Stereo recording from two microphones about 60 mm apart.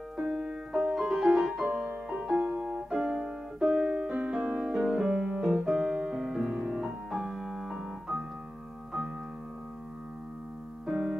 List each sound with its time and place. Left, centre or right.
0.2 s music: centre
1.7 s music: centre
2.6 s piano: centre
3.5 s music: centre
10.9 s keyboard: centre